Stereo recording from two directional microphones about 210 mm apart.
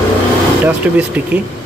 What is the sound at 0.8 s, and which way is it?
Speech, 5° right (ahead or behind).